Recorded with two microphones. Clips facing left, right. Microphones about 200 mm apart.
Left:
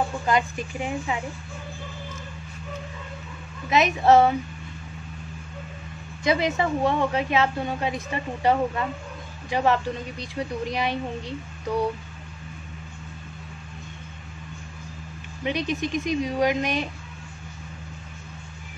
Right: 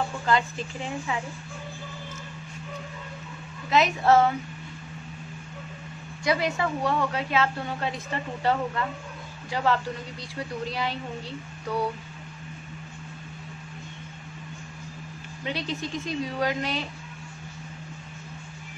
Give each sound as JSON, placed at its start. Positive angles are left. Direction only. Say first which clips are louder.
{"t": 0.3, "sound": "a woman's voice", "louder": "even", "side_deg": 15}
{"t": 3.7, "sound": "a woman's voice", "louder": "left 3 dB", "side_deg": 20}
{"t": 6.2, "sound": "a woman's voice", "louder": "left 3 dB", "side_deg": 20}
{"t": 15.4, "sound": "a woman's voice", "louder": "left 5 dB", "side_deg": 15}